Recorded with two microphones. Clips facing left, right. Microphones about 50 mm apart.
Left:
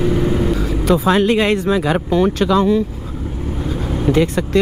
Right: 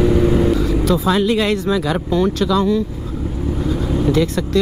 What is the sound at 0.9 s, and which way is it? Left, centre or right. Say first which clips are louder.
Speech: left 4 dB; left.